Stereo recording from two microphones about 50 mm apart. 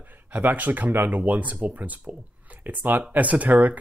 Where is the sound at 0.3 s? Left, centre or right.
Right.